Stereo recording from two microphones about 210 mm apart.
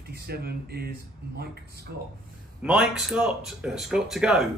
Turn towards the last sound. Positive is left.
turn(degrees=-5)  # may be behind; listen again after turning